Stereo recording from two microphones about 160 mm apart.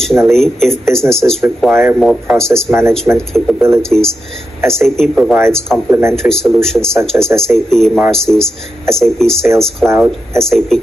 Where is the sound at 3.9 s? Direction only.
5° right (ahead or behind).